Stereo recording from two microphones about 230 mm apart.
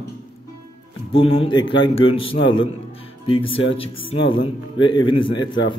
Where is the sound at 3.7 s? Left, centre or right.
Left.